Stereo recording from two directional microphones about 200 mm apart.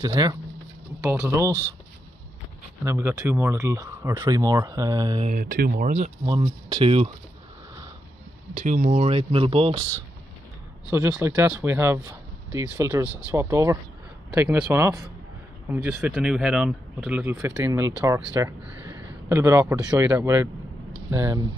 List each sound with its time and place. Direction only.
0.0 s speech: 20° right (ahead or behind)
2.8 s speech: 10° right (ahead or behind)
5.2 s speech: 40° right (ahead or behind)
6.2 s speech: 20° right (ahead or behind)
8.5 s speech: 40° right (ahead or behind)
10.9 s speech: 10° right (ahead or behind)